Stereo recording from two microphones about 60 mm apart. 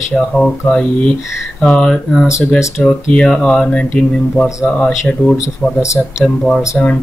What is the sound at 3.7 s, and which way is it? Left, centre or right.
Speech, centre.